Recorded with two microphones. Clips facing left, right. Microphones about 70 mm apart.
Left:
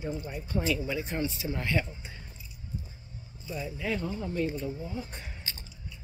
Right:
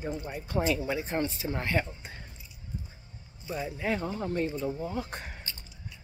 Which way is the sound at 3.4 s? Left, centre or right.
Right.